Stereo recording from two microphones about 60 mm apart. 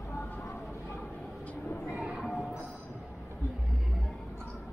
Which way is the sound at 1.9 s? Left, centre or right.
Centre.